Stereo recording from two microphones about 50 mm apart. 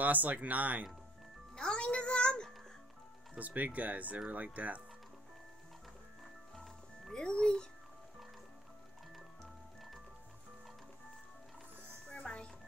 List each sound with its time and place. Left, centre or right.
0.0 s speech: right
1.5 s music: centre
3.3 s speech: right
6.5 s music: centre
9.1 s music: centre
12.1 s music: left